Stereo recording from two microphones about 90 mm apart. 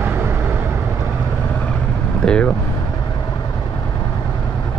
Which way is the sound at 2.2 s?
10° left (ahead or behind).